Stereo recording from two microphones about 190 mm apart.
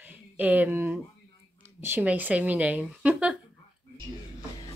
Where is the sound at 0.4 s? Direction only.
10° right (ahead or behind).